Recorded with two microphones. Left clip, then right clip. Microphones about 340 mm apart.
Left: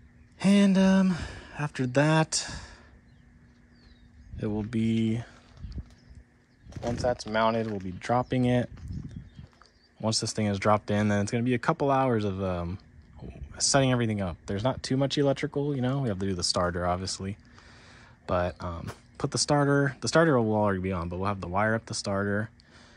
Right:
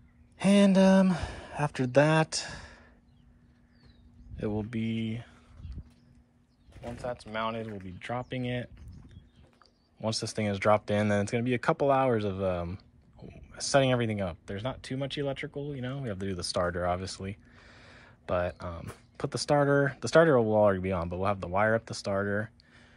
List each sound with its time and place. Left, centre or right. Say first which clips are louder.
0.4 s speech: right 1 dB; centre
4.4 s speech: left 2 dB; centre
6.8 s speech: left 8 dB; centre
9.9 s speech: left 3 dB; centre